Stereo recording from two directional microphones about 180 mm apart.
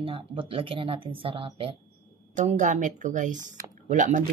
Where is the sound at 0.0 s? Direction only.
30° right (ahead or behind).